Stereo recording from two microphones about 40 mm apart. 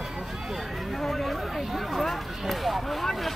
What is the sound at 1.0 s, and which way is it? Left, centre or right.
Speech, centre.